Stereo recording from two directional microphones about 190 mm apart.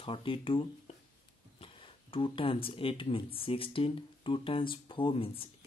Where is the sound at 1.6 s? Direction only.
25° left (ahead or behind).